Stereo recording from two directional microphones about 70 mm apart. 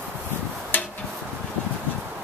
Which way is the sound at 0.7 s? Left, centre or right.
Left.